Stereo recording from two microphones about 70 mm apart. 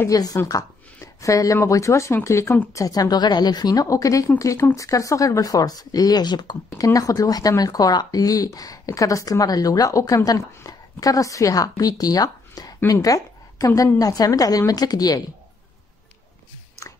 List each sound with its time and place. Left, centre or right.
0.1 s speech: left
0.5 s speech: left
2.7 s speech: left
6.8 s speech: left
16.8 s a sound: left